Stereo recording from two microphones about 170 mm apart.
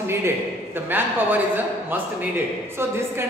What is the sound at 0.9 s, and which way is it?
Speech, 10° right (ahead or behind).